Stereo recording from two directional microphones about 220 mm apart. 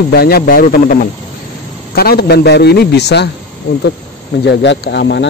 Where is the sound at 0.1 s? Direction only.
45° left (ahead or behind).